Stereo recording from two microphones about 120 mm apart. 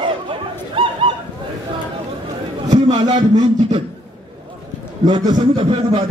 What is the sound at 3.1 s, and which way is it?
Speech, 70° right (ahead or behind).